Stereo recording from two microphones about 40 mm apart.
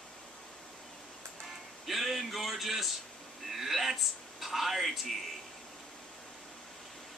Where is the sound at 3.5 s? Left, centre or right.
Centre.